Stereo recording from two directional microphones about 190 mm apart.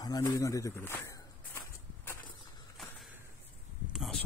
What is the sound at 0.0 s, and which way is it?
Speech, 20° left (ahead or behind).